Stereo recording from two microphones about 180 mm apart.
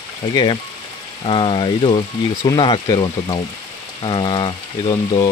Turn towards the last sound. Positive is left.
turn(degrees=25)  # may be behind; listen again after turning